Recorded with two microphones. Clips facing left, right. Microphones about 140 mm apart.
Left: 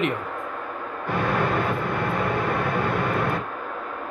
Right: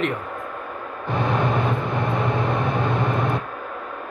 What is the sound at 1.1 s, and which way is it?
Vehicle, 20° right (ahead or behind).